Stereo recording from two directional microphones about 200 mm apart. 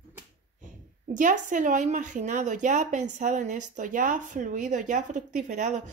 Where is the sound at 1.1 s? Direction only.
40° right (ahead or behind).